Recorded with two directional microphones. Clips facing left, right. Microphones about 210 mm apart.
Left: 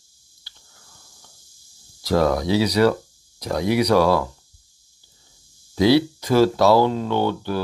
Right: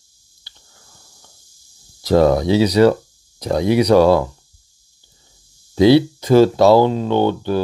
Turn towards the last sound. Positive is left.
turn(degrees=-25)  # may be behind; listen again after turning